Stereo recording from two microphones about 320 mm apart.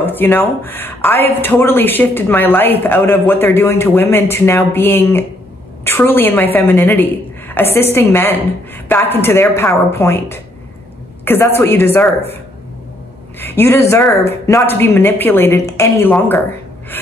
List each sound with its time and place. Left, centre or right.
0.0 s speech: centre
13.6 s speech: centre
16.9 s a sound: centre